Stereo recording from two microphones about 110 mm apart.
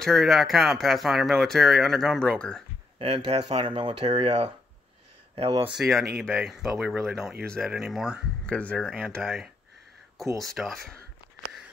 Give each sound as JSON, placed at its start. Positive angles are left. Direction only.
{"t": 0.0, "sound": "speech", "side_deg": 0}
{"t": 3.0, "sound": "speech", "side_deg": -55}
{"t": 4.1, "sound": "speech", "side_deg": -80}
{"t": 5.7, "sound": "speech", "side_deg": 0}
{"t": 8.5, "sound": "speech", "side_deg": 10}